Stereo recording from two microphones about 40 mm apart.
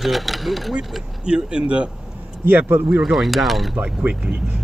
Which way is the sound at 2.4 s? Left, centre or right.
Right.